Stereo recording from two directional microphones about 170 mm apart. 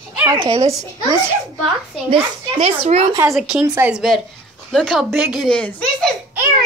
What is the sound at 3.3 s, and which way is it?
Speech, centre (ahead or behind).